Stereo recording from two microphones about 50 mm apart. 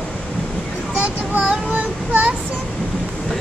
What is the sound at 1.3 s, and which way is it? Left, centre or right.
Child singing, right.